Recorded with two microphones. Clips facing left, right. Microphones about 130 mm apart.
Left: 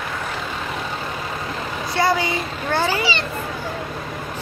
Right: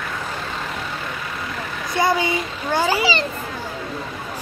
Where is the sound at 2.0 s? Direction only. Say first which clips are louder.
Right 1 dB; 20° right (ahead or behind).